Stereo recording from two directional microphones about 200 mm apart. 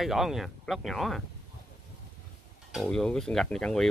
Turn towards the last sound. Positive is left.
turn(degrees=5)  # may be behind; listen again after turning